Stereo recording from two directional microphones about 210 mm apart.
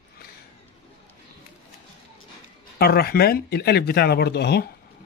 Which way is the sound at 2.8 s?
45° left (ahead or behind).